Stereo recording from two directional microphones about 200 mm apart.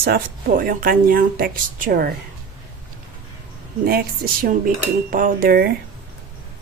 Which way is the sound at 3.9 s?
50° right (ahead or behind).